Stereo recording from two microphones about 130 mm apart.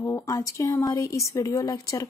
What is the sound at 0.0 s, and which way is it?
Speech, 25° left (ahead or behind).